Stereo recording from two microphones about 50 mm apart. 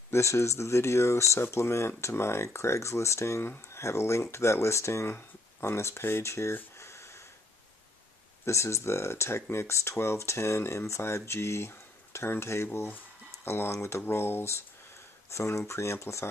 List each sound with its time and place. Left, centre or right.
0.1 s speech: left
1.4 s speech: left
6.8 s a sound: left
8.5 s speech: left
12.6 s speech: left
15.3 s speech: left